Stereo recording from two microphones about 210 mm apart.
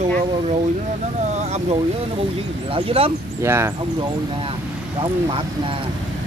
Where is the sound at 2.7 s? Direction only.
25° right (ahead or behind).